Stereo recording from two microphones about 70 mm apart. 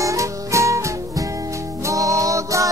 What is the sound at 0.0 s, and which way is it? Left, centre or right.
Music, right.